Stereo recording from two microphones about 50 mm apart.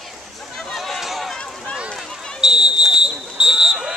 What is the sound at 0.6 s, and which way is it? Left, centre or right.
Run, centre.